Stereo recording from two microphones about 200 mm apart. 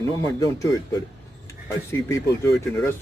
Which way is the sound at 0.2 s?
15° left (ahead or behind).